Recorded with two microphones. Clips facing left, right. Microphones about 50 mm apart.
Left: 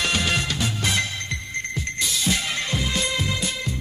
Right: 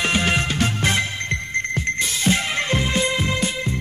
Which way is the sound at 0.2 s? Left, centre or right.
Right.